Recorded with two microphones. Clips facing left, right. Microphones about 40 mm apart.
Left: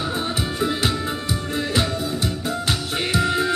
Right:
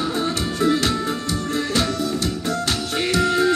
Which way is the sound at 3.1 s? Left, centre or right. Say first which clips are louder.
Right 3 dB; centre.